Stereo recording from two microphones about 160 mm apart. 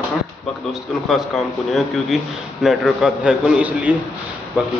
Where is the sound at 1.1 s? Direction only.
Centre (ahead or behind).